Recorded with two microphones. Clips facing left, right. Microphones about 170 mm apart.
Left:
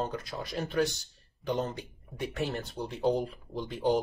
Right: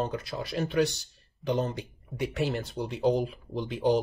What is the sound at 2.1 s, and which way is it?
Speech, centre (ahead or behind).